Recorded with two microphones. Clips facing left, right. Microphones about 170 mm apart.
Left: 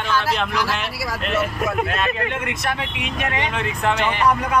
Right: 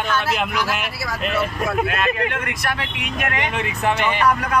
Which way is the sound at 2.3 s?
25° left (ahead or behind).